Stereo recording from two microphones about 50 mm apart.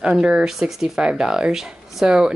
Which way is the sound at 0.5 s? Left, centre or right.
Centre.